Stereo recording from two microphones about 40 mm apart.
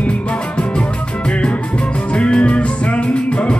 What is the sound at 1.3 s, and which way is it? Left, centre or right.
Music, left.